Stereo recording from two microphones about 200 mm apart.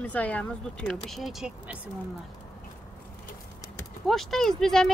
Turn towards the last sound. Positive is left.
turn(degrees=0)  # may be behind; listen again after turning